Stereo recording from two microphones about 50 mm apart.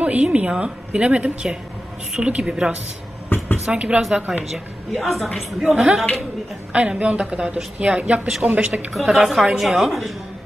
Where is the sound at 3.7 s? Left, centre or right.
Right.